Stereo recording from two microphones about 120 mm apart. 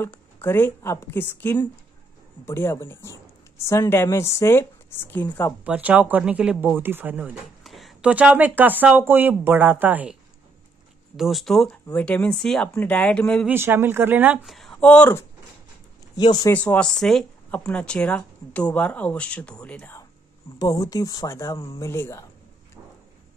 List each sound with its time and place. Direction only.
0.0 s a woman's voice: 20° left (ahead or behind)
5.7 s speech: 10° right (ahead or behind)
7.6 s a sound: centre (ahead or behind)
8.1 s speech: 10° right (ahead or behind)
11.1 s speech: centre (ahead or behind)
13.5 s speech: 20° right (ahead or behind)
14.4 s speech: centre (ahead or behind)
16.2 s speech: 35° left (ahead or behind)
16.5 s speech: 10° left (ahead or behind)
20.5 s a woman's voice: 30° left (ahead or behind)